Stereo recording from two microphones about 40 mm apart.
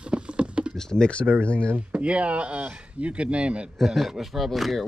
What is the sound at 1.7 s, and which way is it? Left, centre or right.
Speech, right.